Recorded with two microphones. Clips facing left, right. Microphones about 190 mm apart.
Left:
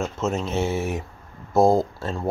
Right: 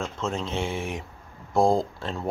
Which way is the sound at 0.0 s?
5° left (ahead or behind).